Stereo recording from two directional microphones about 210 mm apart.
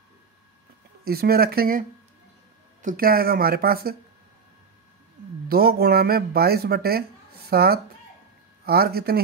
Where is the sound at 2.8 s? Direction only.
45° right (ahead or behind).